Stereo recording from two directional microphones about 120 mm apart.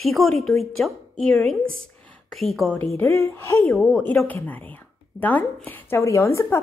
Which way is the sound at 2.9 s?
25° left (ahead or behind).